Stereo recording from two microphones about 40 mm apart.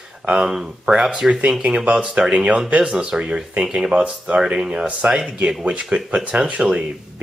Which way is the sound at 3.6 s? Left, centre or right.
Centre.